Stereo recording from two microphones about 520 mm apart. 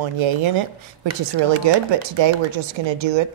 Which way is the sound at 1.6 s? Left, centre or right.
Right.